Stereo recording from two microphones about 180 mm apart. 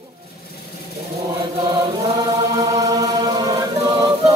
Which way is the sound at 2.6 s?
20° right (ahead or behind).